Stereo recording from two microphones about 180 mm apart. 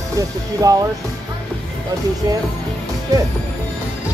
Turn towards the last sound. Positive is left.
turn(degrees=-20)  # may be behind; listen again after turning